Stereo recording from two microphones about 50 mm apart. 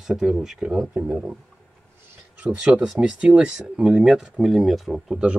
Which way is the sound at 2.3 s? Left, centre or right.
Right.